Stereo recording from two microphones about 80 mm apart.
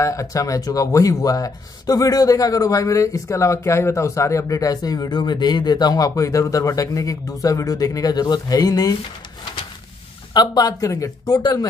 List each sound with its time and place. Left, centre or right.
0.0 s speech: left
10.3 s speech: left
11.2 s speech: left